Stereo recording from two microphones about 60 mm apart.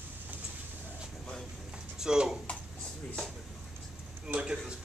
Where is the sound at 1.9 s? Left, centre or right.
Centre.